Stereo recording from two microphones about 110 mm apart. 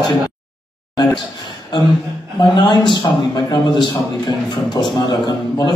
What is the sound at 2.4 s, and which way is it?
A man's voice, 45° left (ahead or behind).